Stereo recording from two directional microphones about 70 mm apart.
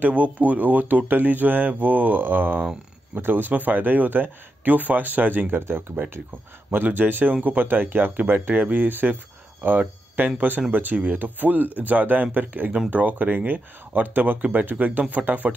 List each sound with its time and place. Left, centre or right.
0.0 s speech: right